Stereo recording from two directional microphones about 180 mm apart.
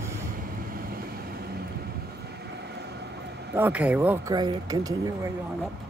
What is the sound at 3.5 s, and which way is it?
Speech, 10° right (ahead or behind).